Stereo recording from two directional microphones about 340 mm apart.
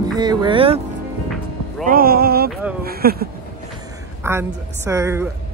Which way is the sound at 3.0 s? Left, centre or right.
Right.